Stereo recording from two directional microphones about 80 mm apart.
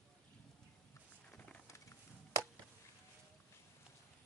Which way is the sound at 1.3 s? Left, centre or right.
Centre.